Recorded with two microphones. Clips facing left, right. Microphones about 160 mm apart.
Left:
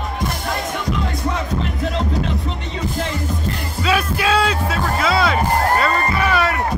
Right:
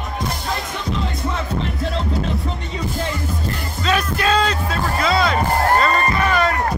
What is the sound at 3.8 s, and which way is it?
Music, 5° left (ahead or behind).